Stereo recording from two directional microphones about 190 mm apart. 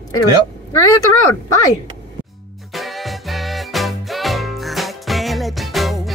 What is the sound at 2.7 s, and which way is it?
Music, centre (ahead or behind).